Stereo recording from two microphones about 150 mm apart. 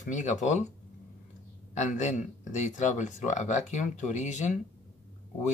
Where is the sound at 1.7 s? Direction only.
50° left (ahead or behind).